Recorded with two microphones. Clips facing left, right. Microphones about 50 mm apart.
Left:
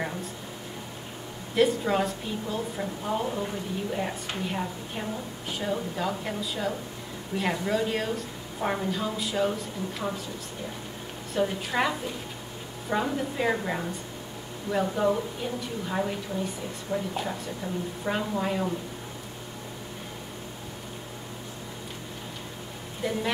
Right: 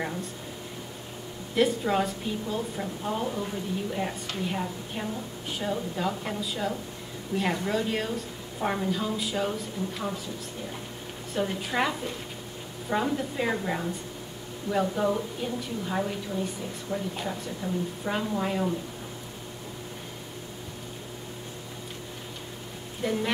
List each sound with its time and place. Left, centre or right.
0.0 s a sound: centre
1.5 s a woman's voice: centre
11.3 s a woman's voice: centre
18.0 s a woman's voice: centre
23.0 s a woman's voice: centre